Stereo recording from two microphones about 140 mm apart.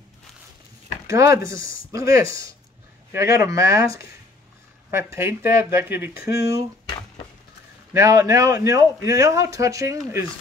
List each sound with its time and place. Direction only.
1.1 s a man's voice: 20° right (ahead or behind)
7.9 s a man's voice: 20° right (ahead or behind)